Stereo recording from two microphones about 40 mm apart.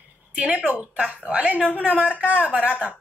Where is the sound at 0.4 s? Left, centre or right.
Right.